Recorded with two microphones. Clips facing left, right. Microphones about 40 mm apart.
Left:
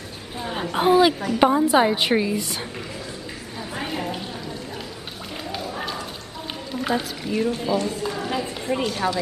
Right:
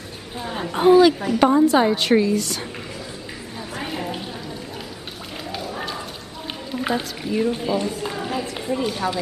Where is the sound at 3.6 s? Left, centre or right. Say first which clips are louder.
Left 1 dB; centre.